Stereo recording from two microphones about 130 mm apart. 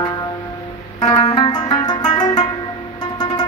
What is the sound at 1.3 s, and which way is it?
Music, 30° left (ahead or behind).